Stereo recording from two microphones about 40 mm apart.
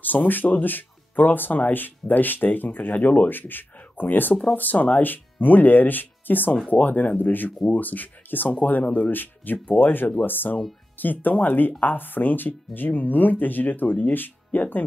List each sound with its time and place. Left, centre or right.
0.0 s speech: left